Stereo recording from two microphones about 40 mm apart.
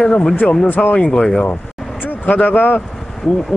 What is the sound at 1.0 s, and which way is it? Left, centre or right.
Speech, left.